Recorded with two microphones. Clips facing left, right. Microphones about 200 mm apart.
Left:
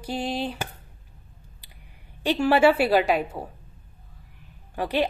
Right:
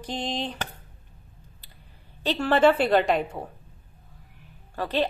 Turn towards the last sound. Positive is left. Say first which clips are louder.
# left 2 dB
turn(degrees=15)  # may be behind; listen again after turning